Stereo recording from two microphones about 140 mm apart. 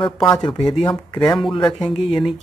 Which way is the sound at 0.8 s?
10° left (ahead or behind).